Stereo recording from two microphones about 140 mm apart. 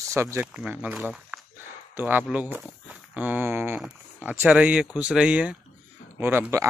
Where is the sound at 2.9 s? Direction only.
10° right (ahead or behind).